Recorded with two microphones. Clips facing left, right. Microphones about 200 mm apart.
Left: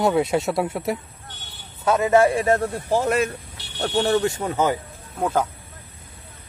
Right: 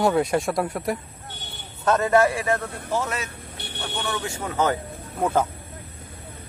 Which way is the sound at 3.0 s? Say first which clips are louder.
Left 10 dB; 55° left (ahead or behind).